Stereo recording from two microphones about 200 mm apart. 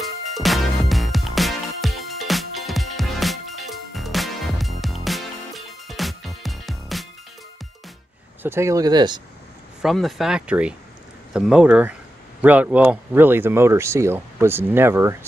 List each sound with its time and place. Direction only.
0.0 s music: centre (ahead or behind)
8.4 s speech: 10° right (ahead or behind)
9.8 s speech: centre (ahead or behind)